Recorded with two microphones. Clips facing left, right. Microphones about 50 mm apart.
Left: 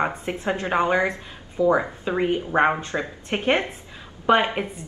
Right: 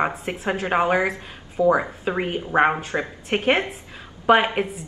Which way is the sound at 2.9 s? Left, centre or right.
Right.